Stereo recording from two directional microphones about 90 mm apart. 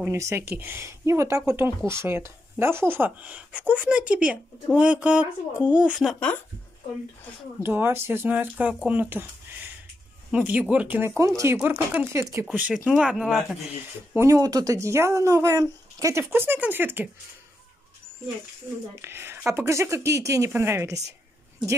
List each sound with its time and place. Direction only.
0.1 s speech: 30° right (ahead or behind); by 6.0 s 10° right (ahead or behind)
7.6 s speech: 25° right (ahead or behind)
10.3 s speech: 15° right (ahead or behind)
11.0 s speech: 30° right (ahead or behind)
11.6 s speech: 20° right (ahead or behind)
12.1 s speech: 30° right (ahead or behind)
12.5 s speech: 15° right (ahead or behind)
14.1 s speech: 35° right (ahead or behind)
18.9 s speech: 25° right (ahead or behind)